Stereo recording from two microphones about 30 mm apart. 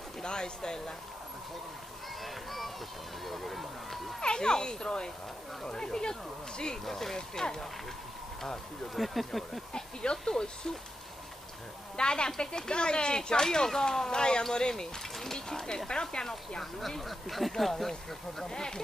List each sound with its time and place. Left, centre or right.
0.2 s speech: left
2.2 s speech: centre
4.2 s speech: left
6.9 s speech: centre
8.9 s speech: centre
10.0 s speech: left
12.0 s a woman's voice: left; by 15.3 s centre
15.3 s speech: left
17.0 s speech: centre
18.5 s speech: left